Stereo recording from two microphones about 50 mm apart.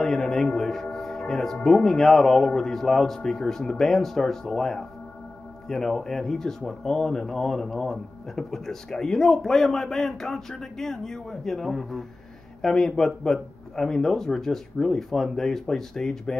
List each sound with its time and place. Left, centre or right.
0.0 s speech: centre
0.5 s a sound: centre
0.9 s speech: centre